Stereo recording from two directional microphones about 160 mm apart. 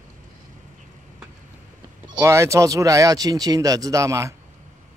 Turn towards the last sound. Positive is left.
turn(degrees=-20)  # may be behind; listen again after turning